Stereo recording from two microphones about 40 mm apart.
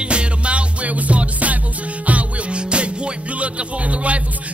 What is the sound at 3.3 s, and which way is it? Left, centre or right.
Speech, right.